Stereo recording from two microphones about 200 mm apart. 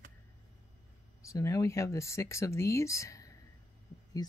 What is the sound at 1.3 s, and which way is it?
Speech, 15° left (ahead or behind).